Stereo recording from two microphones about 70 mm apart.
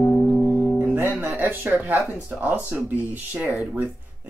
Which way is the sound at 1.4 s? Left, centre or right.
Right.